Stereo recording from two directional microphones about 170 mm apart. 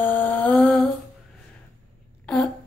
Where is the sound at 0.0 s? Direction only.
10° left (ahead or behind).